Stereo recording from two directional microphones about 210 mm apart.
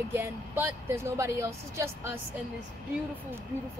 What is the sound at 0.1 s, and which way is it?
Speech, 10° right (ahead or behind).